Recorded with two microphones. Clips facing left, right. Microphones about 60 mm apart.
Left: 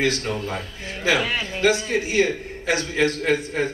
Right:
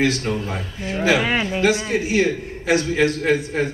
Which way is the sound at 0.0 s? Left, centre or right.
Centre.